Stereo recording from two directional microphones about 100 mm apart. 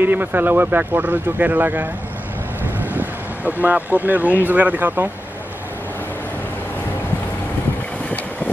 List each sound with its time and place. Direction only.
0.0 s speech: 20° right (ahead or behind)
2.8 s vehicle: 15° right (ahead or behind)
4.5 s speech: 15° right (ahead or behind)